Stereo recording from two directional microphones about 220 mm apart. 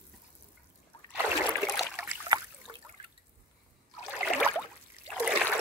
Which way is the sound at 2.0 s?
15° right (ahead or behind).